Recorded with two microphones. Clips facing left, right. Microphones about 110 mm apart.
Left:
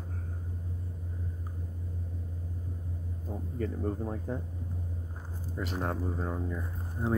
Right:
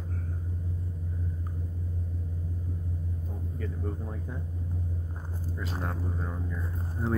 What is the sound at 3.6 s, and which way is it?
Speech, 40° left (ahead or behind).